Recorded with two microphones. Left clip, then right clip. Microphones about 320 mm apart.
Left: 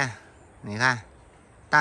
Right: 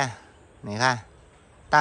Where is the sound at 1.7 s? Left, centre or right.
Centre.